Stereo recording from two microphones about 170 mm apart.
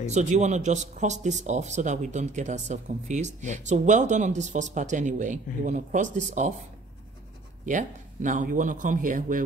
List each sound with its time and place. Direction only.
0.1 s speech: 40° right (ahead or behind)
7.6 s speech: 50° right (ahead or behind)